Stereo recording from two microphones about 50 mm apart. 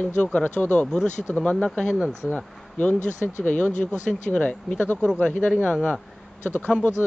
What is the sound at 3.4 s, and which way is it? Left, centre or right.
Speech, left.